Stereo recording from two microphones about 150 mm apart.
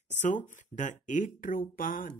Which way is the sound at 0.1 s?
55° left (ahead or behind).